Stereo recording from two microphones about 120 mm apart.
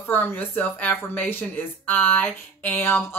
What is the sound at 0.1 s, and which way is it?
Speech, 15° left (ahead or behind).